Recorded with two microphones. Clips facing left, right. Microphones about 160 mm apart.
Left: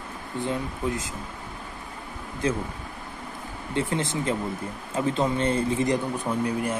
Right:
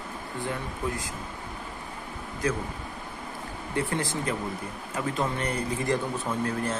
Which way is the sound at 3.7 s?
20° left (ahead or behind).